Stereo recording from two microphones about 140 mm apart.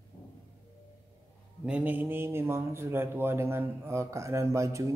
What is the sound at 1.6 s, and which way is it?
A man's voice, 10° right (ahead or behind).